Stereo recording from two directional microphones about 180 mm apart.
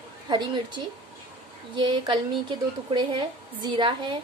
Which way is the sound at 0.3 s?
25° right (ahead or behind).